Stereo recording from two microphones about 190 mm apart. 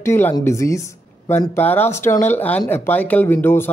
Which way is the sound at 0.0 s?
15° left (ahead or behind).